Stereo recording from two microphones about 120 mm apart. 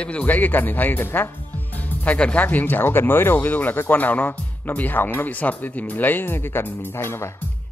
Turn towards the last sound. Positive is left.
turn(degrees=20)  # may be behind; listen again after turning